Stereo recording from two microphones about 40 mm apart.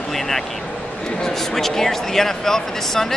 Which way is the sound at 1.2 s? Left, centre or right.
Centre.